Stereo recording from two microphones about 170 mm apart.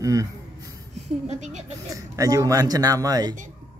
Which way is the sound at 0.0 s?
20° right (ahead or behind).